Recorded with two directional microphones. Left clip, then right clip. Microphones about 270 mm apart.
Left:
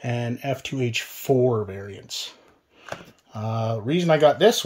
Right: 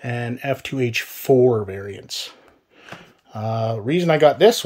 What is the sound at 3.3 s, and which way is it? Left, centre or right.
Speech, centre.